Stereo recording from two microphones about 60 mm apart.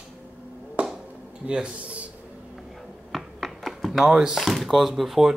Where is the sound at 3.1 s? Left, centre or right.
Centre.